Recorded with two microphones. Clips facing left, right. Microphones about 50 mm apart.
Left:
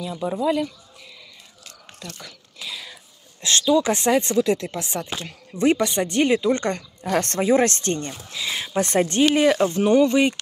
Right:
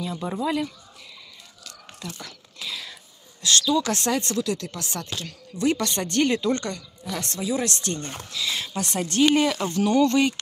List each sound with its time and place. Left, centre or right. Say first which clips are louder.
0.0 s speech: left 4 dB; centre
2.1 s whispering: even; centre
3.3 s speech: left 3 dB; left
5.9 s speech: left 3 dB; centre
7.0 s speech: left 10 dB; left
8.3 s speech: right 1 dB; left
8.8 s speech: left 2 dB; left